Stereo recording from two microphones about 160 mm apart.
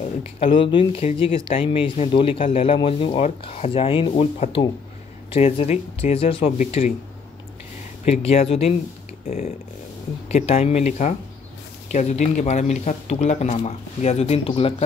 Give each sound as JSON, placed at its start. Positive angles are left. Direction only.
{"t": 0.0, "sound": "speech", "side_deg": 40}
{"t": 8.0, "sound": "speech", "side_deg": 40}
{"t": 10.2, "sound": "speech", "side_deg": 45}